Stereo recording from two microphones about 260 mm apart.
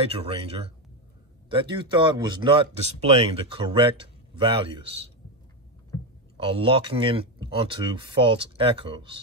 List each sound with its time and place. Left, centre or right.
0.1 s speech: right
6.3 s speech: right